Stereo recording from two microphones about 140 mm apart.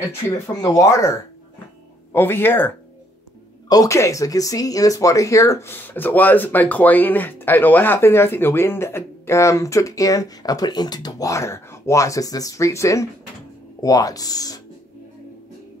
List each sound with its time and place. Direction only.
0.6 s speech: 25° left (ahead or behind)
3.6 s speech: 25° left (ahead or behind)